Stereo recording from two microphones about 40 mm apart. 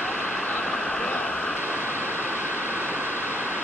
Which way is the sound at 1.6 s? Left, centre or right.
Right.